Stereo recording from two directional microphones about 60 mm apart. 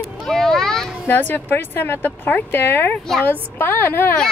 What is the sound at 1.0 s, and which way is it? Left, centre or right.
A woman's voice, left.